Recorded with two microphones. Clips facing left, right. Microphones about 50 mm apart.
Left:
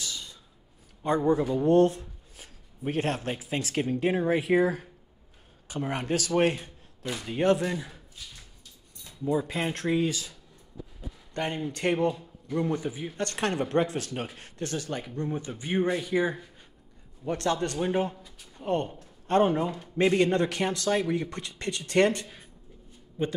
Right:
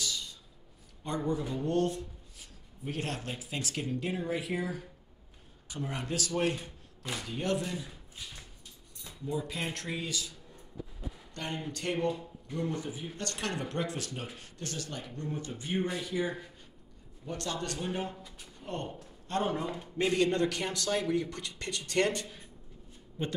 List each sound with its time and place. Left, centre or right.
0.0 s a sound: left
1.0 s a man's voice: left
6.5 s a sound: left
7.6 s speech: left
9.2 s a man's voice: left
11.3 s a man's voice: left
11.8 s speech: left
12.5 s a man's voice: left
14.6 s a man's voice: left
17.2 s a man's voice: left